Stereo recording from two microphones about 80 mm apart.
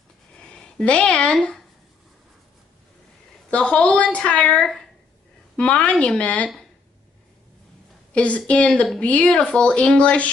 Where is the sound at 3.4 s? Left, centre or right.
Centre.